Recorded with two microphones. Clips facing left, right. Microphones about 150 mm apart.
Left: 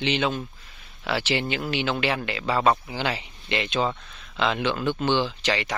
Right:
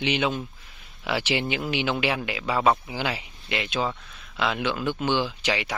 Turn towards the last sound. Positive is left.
turn(degrees=-10)  # may be behind; listen again after turning